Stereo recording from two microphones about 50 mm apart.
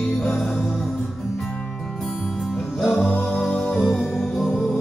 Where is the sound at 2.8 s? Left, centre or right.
Centre.